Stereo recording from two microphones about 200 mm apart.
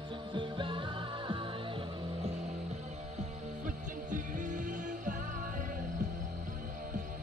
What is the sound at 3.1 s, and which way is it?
Music, 40° right (ahead or behind).